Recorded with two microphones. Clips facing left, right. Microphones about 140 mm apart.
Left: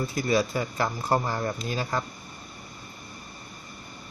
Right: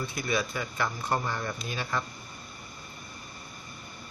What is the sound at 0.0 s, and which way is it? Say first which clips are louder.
Speech: left 6 dB; 40° left (ahead or behind).